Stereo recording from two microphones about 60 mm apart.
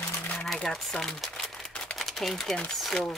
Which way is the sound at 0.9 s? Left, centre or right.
Centre.